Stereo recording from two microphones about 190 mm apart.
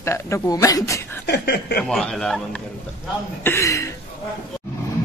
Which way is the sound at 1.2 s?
60° left (ahead or behind).